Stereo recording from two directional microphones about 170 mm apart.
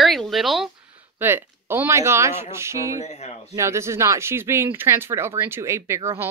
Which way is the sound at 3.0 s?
40° left (ahead or behind).